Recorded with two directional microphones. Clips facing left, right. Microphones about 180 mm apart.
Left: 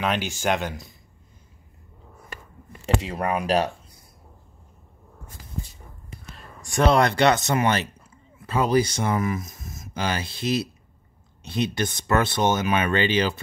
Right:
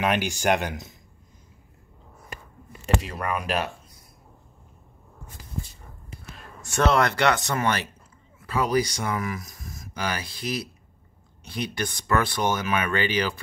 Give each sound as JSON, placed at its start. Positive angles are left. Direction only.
{"t": 0.0, "sound": "speech", "side_deg": -15}
{"t": 3.0, "sound": "speech", "side_deg": 25}
{"t": 6.9, "sound": "speech", "side_deg": 20}